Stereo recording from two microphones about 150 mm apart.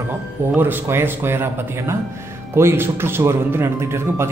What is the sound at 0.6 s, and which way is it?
Speech, 15° right (ahead or behind).